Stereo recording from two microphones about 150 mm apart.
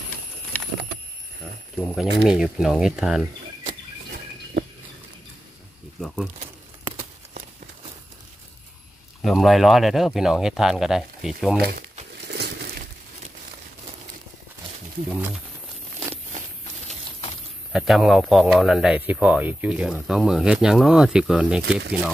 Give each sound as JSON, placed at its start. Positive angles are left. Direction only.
{"t": 2.0, "sound": "speech", "side_deg": -5}
{"t": 5.9, "sound": "speech", "side_deg": 0}
{"t": 9.2, "sound": "speech", "side_deg": 0}
{"t": 12.3, "sound": "a sound", "side_deg": -90}
{"t": 15.0, "sound": "speech", "side_deg": -10}
{"t": 17.7, "sound": "speech", "side_deg": 0}